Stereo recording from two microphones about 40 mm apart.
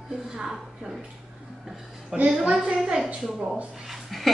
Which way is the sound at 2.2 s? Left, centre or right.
Right.